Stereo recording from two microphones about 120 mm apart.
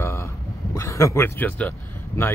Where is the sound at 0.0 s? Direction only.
25° left (ahead or behind).